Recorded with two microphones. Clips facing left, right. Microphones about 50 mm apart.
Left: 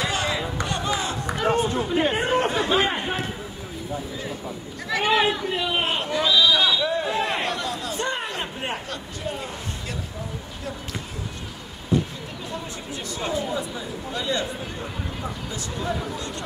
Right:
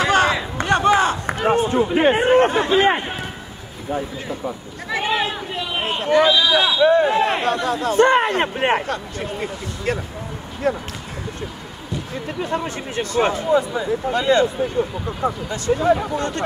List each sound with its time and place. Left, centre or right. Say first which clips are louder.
0.0 s a sound: right 8 dB; right
1.4 s speech: right 5 dB; right
4.5 s speech: right 3 dB; right
5.0 s a man's voice: left 3 dB; centre
6.2 s a man's voice: right 3 dB; right
12.4 s speech: right 10 dB; right
15.2 s a man's voice: right 11 dB; right